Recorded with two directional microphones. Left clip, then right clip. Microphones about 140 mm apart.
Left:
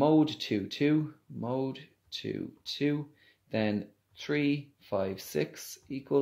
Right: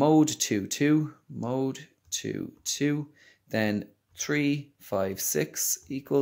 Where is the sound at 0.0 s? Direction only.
50° right (ahead or behind).